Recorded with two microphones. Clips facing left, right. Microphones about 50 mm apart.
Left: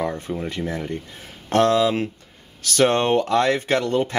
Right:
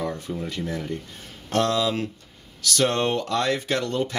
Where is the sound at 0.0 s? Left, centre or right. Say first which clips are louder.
Left 3 dB; left.